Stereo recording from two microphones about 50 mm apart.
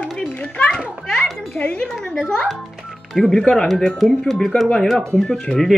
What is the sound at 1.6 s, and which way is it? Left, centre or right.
Speech, left.